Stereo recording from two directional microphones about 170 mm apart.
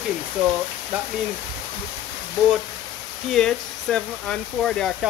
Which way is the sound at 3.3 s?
5° left (ahead or behind).